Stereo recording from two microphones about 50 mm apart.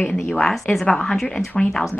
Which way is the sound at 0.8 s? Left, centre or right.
Centre.